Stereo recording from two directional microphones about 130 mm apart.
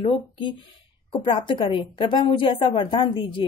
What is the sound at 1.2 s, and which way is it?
A woman's voice, 40° left (ahead or behind).